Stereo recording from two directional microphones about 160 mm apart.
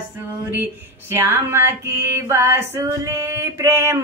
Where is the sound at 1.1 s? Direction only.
15° right (ahead or behind).